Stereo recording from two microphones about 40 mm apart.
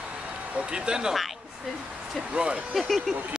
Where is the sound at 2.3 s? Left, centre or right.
Right.